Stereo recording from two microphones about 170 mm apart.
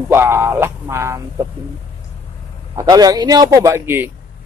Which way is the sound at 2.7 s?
20° right (ahead or behind).